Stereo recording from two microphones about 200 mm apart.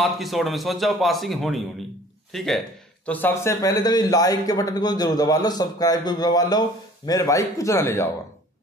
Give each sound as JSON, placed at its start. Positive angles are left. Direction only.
{"t": 0.0, "sound": "a man's voice", "side_deg": 0}